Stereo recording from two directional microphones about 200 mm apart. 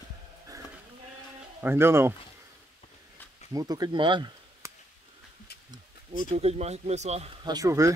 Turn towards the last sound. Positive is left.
turn(degrees=-15)  # may be behind; listen again after turning